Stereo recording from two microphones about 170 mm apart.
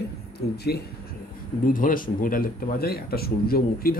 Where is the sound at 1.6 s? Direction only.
55° left (ahead or behind).